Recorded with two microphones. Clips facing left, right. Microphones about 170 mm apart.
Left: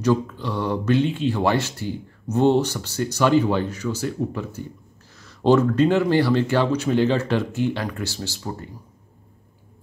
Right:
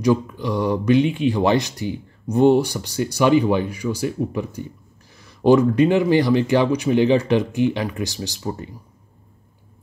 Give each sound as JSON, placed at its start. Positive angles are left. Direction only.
{"t": 0.0, "sound": "speech", "side_deg": -15}